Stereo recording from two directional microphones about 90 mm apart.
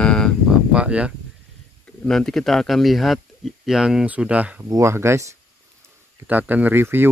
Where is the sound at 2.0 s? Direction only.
5° left (ahead or behind).